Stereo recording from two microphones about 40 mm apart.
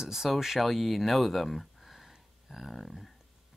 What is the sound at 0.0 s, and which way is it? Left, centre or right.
Speech, centre.